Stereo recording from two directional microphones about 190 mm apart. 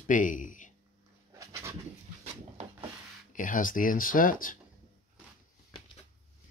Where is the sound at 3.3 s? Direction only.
45° left (ahead or behind).